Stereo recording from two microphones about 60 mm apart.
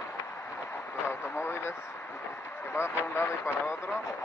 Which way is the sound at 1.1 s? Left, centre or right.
Left.